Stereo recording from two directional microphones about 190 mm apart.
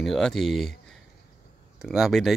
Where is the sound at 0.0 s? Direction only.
Centre (ahead or behind).